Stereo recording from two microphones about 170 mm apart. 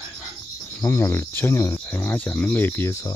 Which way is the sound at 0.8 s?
15° left (ahead or behind).